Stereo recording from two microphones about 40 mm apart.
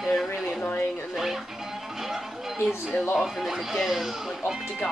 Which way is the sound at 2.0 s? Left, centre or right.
Centre.